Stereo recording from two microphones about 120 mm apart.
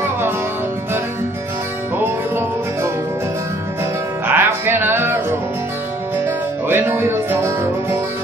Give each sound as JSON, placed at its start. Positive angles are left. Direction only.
{"t": 2.0, "sound": "music", "side_deg": -15}
{"t": 4.3, "sound": "music", "side_deg": -20}
{"t": 6.2, "sound": "music", "side_deg": -20}